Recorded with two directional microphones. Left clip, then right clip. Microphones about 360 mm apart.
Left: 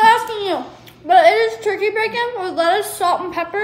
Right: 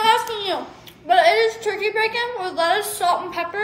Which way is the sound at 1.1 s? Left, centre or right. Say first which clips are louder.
Left 4 dB; left.